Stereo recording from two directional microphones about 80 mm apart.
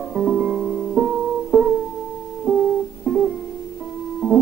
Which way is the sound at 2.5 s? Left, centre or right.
Centre.